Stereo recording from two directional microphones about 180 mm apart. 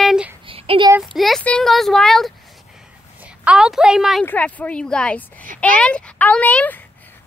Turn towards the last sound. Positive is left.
turn(degrees=10)  # may be behind; listen again after turning